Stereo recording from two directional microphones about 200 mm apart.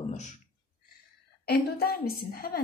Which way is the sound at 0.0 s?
35° left (ahead or behind).